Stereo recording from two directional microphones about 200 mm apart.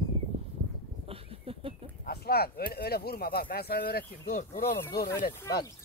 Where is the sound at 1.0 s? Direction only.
30° right (ahead or behind).